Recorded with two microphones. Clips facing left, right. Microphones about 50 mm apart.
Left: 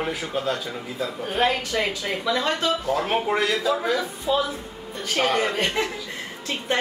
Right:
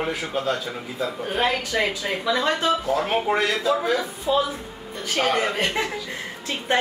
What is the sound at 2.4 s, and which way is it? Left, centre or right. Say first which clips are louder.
Speech: right 3 dB; right.